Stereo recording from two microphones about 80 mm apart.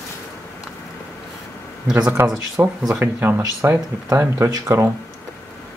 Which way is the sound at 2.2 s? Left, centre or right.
Right.